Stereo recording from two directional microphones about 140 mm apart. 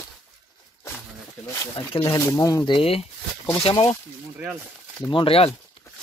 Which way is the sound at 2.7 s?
45° left (ahead or behind).